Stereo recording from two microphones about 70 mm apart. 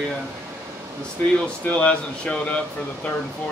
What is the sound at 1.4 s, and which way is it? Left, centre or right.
Speech, centre.